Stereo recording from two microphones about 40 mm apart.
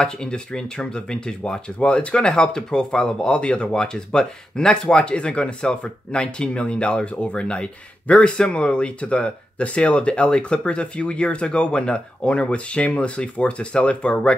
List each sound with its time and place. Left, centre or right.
0.0 s speech: left